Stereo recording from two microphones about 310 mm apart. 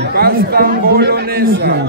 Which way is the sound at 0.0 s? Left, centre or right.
Right.